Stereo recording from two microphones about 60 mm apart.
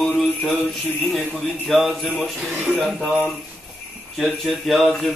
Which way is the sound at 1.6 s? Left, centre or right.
Centre.